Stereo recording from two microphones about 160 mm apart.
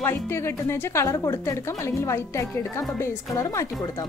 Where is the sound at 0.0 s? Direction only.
15° left (ahead or behind).